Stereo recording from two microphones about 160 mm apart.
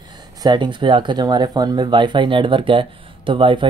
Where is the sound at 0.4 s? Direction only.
30° right (ahead or behind).